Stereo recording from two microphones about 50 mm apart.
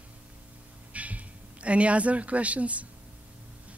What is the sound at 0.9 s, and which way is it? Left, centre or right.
Speech, right.